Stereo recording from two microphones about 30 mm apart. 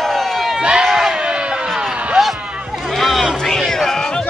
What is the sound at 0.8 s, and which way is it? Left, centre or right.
Crowd, centre.